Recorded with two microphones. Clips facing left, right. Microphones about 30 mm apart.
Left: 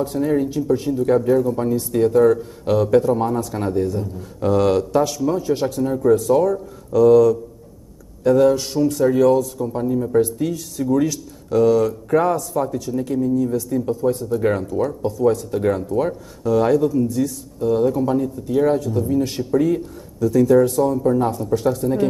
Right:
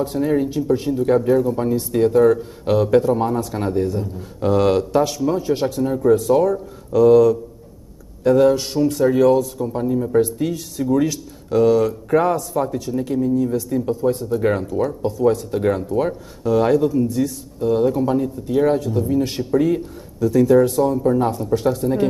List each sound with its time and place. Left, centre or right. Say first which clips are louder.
0.0 s speech: even; right